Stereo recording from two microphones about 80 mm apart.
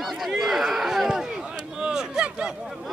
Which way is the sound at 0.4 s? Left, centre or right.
Centre.